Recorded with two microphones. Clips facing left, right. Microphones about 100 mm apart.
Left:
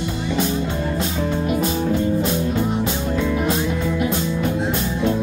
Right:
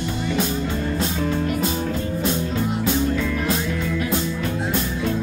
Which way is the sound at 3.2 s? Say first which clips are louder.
Left 3 dB; 20° left (ahead or behind).